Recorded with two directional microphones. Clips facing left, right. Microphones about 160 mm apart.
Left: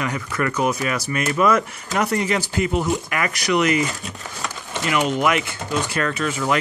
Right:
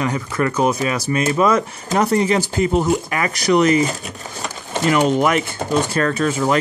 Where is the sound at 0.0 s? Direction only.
30° right (ahead or behind).